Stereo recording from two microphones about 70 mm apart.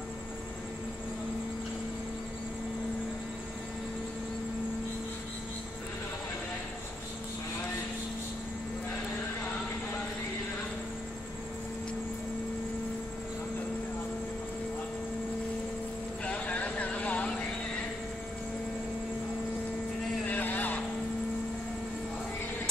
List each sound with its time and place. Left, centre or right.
16.3 s vehicle: centre
20.2 s vehicle: left